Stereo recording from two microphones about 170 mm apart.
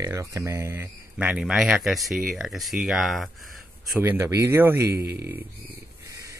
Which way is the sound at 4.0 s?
15° right (ahead or behind).